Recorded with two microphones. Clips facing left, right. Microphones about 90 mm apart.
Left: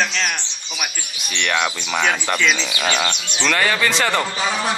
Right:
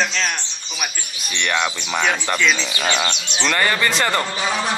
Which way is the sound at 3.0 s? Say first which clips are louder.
Even; 20° right (ahead or behind).